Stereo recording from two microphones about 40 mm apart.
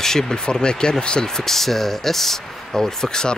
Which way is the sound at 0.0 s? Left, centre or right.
Centre.